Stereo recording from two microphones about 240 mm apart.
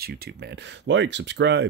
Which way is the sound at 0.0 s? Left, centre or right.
Right.